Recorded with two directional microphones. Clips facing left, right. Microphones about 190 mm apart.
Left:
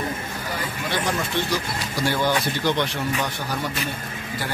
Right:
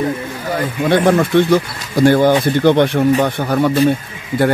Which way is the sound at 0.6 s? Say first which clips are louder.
Right 14 dB; 55° right (ahead or behind).